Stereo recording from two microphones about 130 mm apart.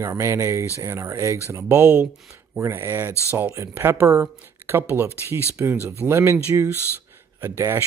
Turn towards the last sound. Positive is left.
turn(degrees=-20)  # may be behind; listen again after turning